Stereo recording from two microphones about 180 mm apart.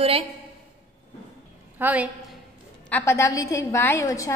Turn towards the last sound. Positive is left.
turn(degrees=15)  # may be behind; listen again after turning